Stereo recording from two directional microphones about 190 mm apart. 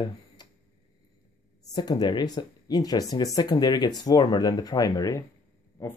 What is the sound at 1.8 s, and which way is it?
Speech, 20° left (ahead or behind).